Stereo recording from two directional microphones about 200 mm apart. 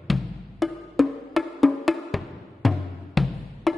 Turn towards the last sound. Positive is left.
turn(degrees=0)  # may be behind; listen again after turning